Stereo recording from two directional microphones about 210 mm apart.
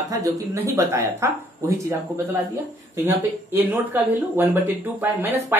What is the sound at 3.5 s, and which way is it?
A woman's voice, 10° right (ahead or behind).